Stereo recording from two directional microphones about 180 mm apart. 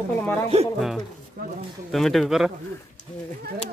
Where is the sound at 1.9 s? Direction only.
Centre (ahead or behind).